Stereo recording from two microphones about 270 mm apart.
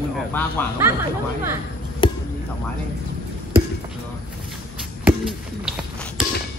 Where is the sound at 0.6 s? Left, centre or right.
Centre.